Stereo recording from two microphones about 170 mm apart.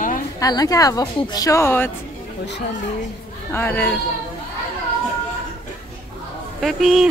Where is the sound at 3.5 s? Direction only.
10° left (ahead or behind).